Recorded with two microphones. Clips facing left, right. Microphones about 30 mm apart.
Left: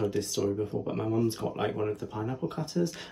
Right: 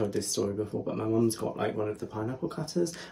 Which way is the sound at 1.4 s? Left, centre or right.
Centre.